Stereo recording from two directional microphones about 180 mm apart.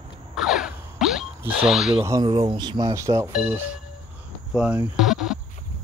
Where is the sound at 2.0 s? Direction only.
20° right (ahead or behind).